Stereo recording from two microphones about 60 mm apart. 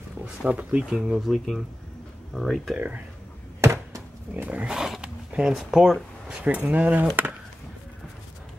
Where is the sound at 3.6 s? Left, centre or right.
Right.